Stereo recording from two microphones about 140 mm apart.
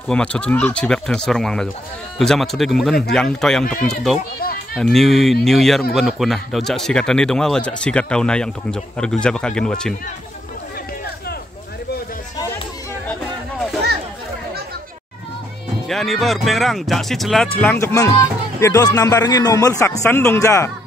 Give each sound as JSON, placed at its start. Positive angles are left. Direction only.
{"t": 0.1, "sound": "speech", "side_deg": 10}
{"t": 15.9, "sound": "speech", "side_deg": 0}
{"t": 17.6, "sound": "a man's voice", "side_deg": 15}